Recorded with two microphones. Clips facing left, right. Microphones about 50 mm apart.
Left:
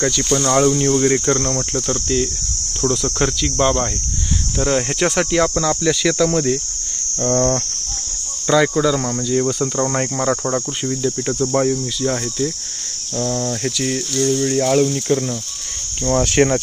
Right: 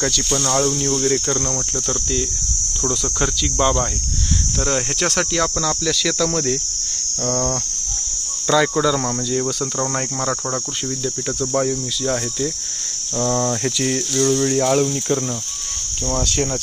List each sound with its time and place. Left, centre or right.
0.1 s cricket: centre
8.7 s cricket: centre
13.2 s cricket: right
13.5 s cricket: centre
16.4 s speech: left